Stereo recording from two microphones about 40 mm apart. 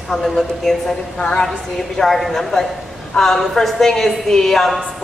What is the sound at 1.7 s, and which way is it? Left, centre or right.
A woman's voice, centre.